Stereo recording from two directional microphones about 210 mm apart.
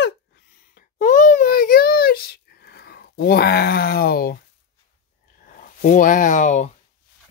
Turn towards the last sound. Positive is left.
turn(degrees=35)  # may be behind; listen again after turning